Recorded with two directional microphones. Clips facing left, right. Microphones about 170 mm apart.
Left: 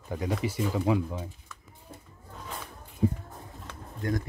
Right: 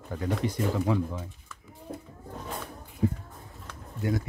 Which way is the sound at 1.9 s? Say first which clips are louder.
Right 9 dB; 55° right (ahead or behind).